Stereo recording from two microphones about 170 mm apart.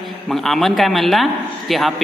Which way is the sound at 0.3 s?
Centre (ahead or behind).